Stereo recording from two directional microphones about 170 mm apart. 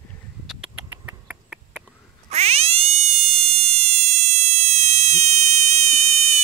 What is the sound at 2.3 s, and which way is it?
Frog, 40° right (ahead or behind).